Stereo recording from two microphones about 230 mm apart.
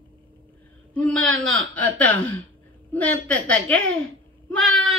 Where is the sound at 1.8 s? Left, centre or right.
Centre.